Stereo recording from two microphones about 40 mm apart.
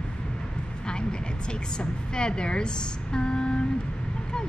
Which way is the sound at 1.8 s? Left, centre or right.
Left.